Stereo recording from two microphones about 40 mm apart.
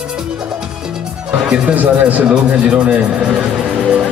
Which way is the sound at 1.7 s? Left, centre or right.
Right.